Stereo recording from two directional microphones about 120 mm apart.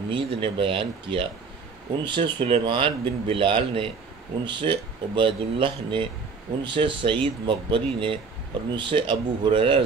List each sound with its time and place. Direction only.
0.1 s speech: 45° right (ahead or behind)